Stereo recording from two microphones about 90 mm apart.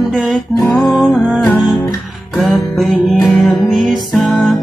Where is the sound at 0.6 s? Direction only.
25° left (ahead or behind).